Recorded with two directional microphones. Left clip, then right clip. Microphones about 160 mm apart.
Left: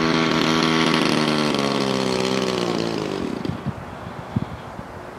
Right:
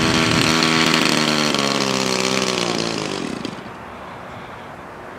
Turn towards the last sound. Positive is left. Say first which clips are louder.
# right 1 dB
turn(degrees=-30)  # may be behind; listen again after turning